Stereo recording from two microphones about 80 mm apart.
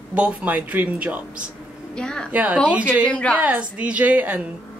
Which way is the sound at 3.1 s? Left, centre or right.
Centre.